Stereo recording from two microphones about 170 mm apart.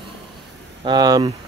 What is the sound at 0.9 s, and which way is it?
Speech, 25° right (ahead or behind).